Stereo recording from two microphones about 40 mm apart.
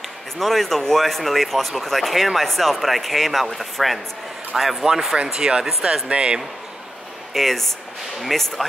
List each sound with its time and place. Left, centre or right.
0.4 s speech: centre
6.0 s speech: right
7.3 s speech: centre